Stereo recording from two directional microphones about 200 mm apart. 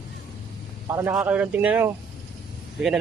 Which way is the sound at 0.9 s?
10° right (ahead or behind).